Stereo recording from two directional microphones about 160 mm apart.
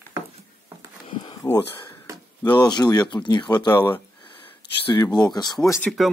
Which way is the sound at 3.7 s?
15° left (ahead or behind).